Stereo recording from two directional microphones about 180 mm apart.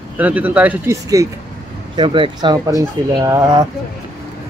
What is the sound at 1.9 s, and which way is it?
Speech, 30° right (ahead or behind).